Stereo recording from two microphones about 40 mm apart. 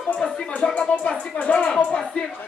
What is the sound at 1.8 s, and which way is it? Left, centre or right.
Speech, left.